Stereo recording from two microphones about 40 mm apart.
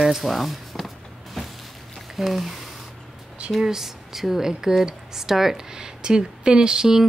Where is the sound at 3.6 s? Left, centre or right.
Centre.